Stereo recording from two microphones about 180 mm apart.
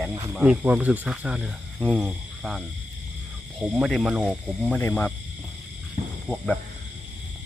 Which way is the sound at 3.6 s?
5° right (ahead or behind).